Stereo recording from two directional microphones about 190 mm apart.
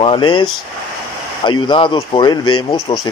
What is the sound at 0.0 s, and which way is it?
Speech, 25° left (ahead or behind).